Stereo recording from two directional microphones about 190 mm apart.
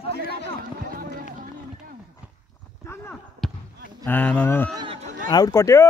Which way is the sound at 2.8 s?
15° left (ahead or behind).